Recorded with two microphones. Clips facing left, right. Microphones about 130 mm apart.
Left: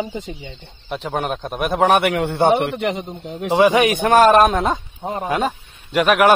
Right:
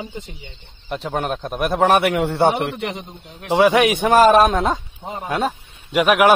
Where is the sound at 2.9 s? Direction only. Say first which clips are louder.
Left 6 dB; 80° left.